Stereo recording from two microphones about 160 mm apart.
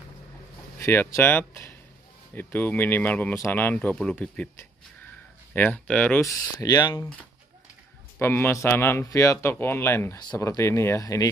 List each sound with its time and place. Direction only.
0.7 s speech: 15° left (ahead or behind)
5.5 s speech: 10° left (ahead or behind)
6.2 s speech: 20° left (ahead or behind)
8.2 s speech: 15° left (ahead or behind)